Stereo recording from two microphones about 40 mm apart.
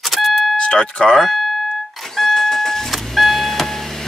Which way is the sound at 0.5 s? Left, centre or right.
Left.